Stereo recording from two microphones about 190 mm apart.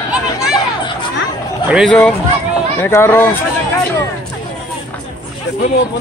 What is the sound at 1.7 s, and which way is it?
Speech, centre (ahead or behind).